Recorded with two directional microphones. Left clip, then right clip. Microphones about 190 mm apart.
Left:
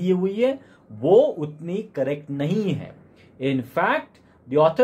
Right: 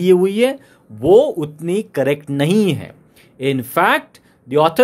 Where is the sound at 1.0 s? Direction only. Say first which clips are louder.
Right 5 dB; 35° right (ahead or behind).